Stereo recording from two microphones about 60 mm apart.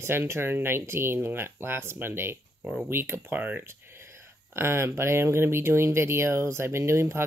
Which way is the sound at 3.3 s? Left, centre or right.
Right.